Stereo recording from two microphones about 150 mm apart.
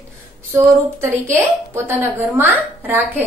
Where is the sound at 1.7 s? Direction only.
15° right (ahead or behind).